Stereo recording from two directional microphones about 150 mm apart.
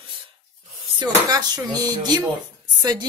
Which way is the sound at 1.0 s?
25° right (ahead or behind).